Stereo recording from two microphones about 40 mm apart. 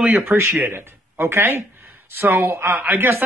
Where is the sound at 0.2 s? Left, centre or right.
Right.